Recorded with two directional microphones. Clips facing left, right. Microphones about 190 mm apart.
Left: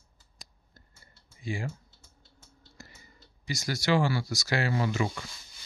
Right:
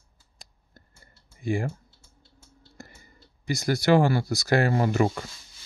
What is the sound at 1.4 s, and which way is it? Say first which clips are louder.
Speech: right 8 dB; 55° right (ahead or behind).